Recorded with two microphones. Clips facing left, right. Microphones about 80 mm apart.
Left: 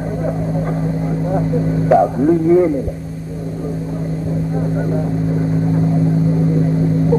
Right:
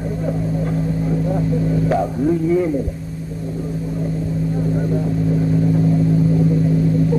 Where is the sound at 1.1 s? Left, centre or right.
Left.